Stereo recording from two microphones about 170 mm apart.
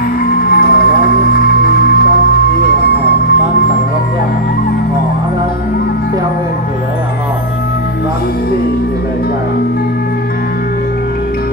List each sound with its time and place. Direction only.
0.5 s music: 60° left (ahead or behind)